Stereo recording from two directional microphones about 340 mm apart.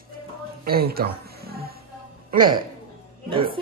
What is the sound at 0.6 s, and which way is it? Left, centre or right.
Music, right.